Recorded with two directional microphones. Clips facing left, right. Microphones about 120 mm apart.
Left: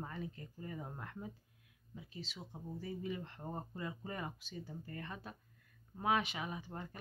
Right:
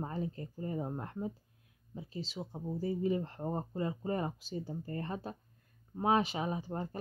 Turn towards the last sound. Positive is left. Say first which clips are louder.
# right 8 dB
turn(degrees=-35)  # may be behind; listen again after turning